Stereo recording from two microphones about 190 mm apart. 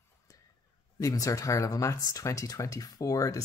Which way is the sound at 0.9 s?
20° left (ahead or behind).